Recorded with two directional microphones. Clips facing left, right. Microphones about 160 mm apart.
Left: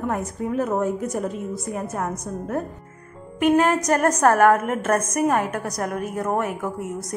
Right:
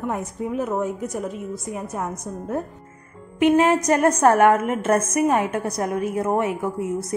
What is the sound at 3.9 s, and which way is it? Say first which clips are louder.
A woman's voice: right 1 dB; centre (ahead or behind).